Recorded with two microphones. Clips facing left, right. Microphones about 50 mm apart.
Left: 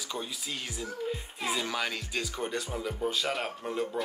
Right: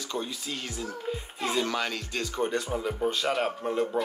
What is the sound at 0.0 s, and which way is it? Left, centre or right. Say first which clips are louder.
Speech: right 3 dB; centre.